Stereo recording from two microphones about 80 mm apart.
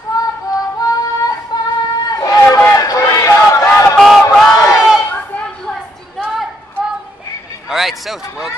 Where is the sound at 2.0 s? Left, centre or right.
Left.